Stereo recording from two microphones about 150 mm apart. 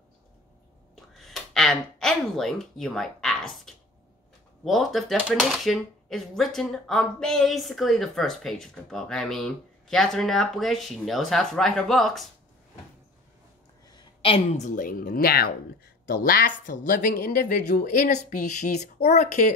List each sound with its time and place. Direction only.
1.1 s a sound: centre (ahead or behind)
4.6 s speech: centre (ahead or behind)
14.2 s speech: 45° left (ahead or behind); by 18.1 s 80° left
18.1 s speech: 55° left (ahead or behind)